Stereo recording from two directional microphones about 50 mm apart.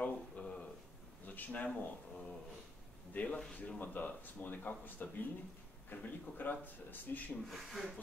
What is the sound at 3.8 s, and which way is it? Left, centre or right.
Speech, left.